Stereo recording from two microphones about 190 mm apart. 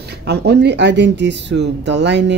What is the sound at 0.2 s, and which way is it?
Speech, 60° right (ahead or behind).